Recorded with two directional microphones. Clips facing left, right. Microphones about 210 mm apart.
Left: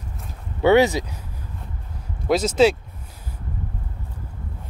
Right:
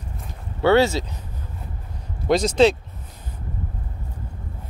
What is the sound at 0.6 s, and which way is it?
Speech, 15° left (ahead or behind).